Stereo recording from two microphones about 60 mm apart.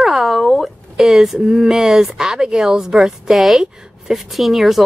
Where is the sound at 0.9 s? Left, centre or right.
Centre.